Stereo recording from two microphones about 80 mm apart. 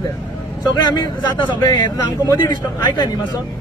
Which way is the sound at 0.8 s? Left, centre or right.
Left.